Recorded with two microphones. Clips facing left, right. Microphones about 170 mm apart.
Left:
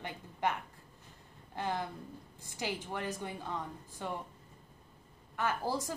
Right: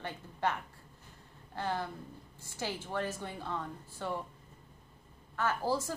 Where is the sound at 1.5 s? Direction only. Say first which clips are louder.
Even; 15° left (ahead or behind).